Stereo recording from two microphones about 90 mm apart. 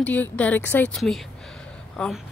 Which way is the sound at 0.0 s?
15° left (ahead or behind).